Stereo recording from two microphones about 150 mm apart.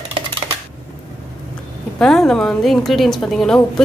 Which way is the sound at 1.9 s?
5° left (ahead or behind).